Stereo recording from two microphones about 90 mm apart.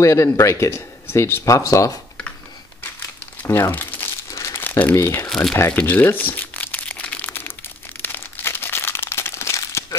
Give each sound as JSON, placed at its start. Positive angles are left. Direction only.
{"t": 0.0, "sound": "speech", "side_deg": 35}
{"t": 3.4, "sound": "speech", "side_deg": 30}
{"t": 4.3, "sound": "crumpling", "side_deg": 35}
{"t": 4.6, "sound": "crumpling", "side_deg": 20}
{"t": 4.9, "sound": "speech", "side_deg": 25}
{"t": 5.3, "sound": "speech", "side_deg": 5}
{"t": 5.7, "sound": "crumpling", "side_deg": 15}